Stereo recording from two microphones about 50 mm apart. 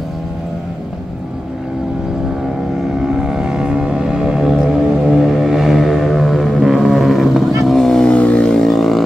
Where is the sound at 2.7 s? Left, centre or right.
Centre.